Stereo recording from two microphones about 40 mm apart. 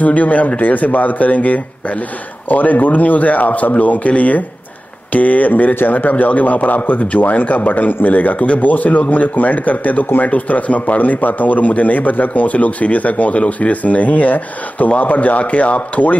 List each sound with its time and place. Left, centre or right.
0.0 s a man's voice: left